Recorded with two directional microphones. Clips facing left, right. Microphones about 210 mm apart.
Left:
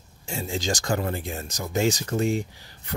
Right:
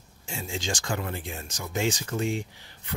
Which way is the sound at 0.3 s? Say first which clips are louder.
Left 5 dB; 40° left (ahead or behind).